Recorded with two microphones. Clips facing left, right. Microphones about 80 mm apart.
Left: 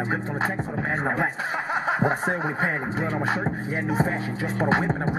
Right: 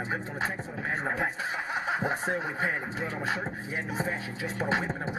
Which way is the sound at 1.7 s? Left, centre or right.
Left.